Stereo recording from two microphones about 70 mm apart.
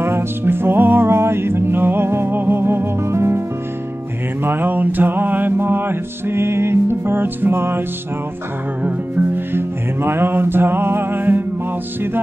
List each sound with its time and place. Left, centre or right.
0.0 s music: right
8.8 s music: right